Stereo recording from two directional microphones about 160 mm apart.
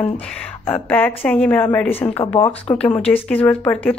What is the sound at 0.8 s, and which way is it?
Speech, 10° left (ahead or behind).